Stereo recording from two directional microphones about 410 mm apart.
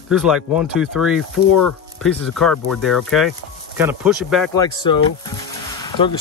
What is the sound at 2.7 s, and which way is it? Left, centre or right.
Speech, centre.